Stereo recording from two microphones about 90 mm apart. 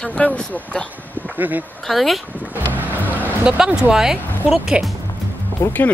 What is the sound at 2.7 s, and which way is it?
Music, 20° right (ahead or behind).